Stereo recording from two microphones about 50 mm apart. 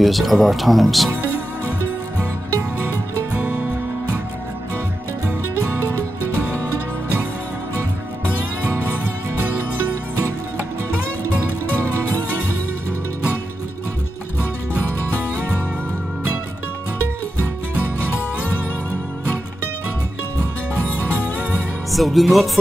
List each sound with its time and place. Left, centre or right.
0.0 s speech: centre
3.3 s music: right
21.9 s music: centre